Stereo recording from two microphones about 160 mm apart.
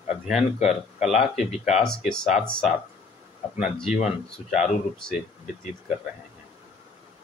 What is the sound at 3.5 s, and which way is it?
Speech, 5° right (ahead or behind).